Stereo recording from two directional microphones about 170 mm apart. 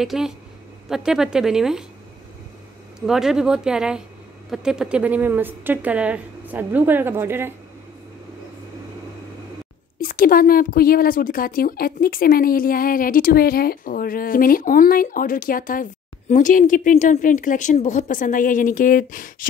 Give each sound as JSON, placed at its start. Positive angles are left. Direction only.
{"t": 0.0, "sound": "a woman's voice", "side_deg": 0}
{"t": 3.1, "sound": "a woman's voice", "side_deg": 0}
{"t": 9.9, "sound": "a woman's voice", "side_deg": 55}